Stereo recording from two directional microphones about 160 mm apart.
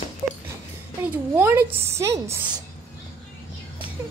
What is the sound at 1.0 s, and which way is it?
A woman's voice, 15° right (ahead or behind).